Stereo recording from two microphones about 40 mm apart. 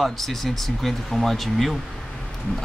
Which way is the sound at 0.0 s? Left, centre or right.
Centre.